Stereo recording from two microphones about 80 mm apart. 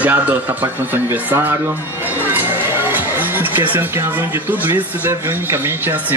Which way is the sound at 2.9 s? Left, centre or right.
Right.